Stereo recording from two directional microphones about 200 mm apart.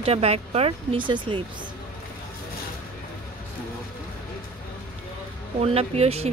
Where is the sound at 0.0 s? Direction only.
30° right (ahead or behind).